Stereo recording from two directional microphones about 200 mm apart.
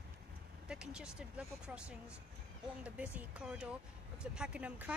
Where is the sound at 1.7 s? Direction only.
5° right (ahead or behind).